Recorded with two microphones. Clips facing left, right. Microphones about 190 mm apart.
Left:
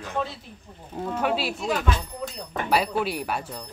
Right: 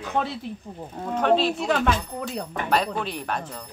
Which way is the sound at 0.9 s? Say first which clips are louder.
Right 4 dB; 5° left (ahead or behind).